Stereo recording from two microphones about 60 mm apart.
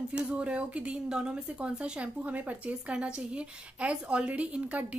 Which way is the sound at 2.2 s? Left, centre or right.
Right.